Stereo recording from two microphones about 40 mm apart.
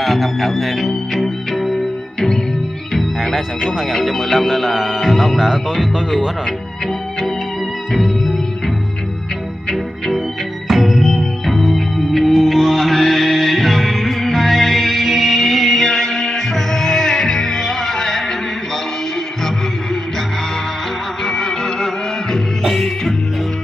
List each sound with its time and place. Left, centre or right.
0.0 s music: centre
2.1 s music: centre
3.3 s speech: centre
7.9 s music: centre
10.7 s music: centre
21.3 s music: centre
22.6 s music: centre